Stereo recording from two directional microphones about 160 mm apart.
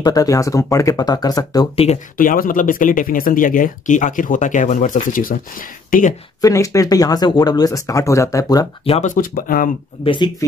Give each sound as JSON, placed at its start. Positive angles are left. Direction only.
{"t": 0.0, "sound": "speech", "side_deg": 20}
{"t": 2.1, "sound": "speech", "side_deg": 60}
{"t": 6.4, "sound": "speech", "side_deg": 20}
{"t": 8.8, "sound": "speech", "side_deg": 40}
{"t": 9.1, "sound": "speech", "side_deg": 60}
{"t": 10.0, "sound": "speech", "side_deg": 30}